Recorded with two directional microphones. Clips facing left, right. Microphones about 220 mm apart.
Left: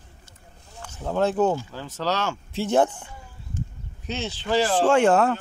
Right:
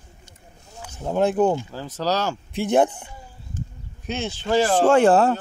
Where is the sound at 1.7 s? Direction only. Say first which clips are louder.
Right 3 dB; 40° right (ahead or behind).